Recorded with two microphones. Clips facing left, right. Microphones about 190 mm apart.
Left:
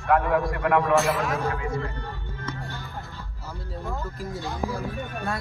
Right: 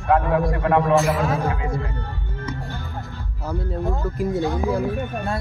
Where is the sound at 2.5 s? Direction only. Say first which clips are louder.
Right 4 dB; 15° right (ahead or behind).